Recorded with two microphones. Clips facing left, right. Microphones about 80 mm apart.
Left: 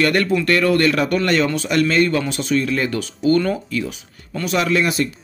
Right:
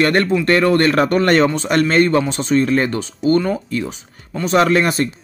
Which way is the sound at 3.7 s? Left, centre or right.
Right.